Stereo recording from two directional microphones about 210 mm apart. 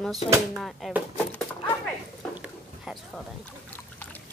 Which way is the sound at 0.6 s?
Centre (ahead or behind).